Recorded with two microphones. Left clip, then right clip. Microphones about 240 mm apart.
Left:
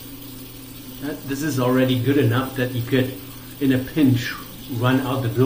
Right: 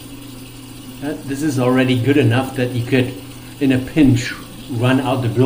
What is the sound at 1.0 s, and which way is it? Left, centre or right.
Speech, centre.